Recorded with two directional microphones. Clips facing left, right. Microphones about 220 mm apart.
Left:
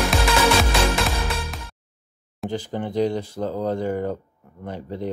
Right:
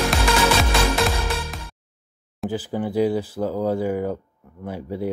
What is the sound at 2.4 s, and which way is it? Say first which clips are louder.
Speech: right 2 dB; 5° right (ahead or behind).